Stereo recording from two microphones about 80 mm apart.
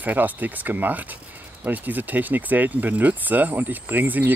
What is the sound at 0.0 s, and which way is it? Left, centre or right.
Speech, right.